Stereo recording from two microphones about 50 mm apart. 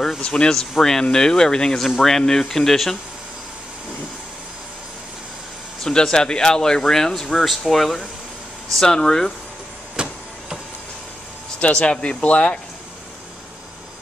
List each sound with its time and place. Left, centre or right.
0.2 s speech: left
0.6 s speech: centre
5.9 s speech: centre
10.0 s a sound: centre
11.6 s speech: left